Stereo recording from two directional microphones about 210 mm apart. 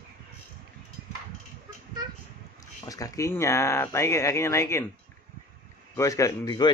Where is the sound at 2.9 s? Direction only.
15° left (ahead or behind).